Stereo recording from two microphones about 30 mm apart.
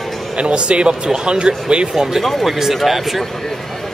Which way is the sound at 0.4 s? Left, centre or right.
Right.